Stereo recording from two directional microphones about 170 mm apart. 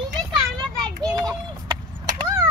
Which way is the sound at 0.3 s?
25° right (ahead or behind).